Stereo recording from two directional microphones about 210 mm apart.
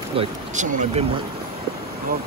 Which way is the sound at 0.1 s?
25° right (ahead or behind).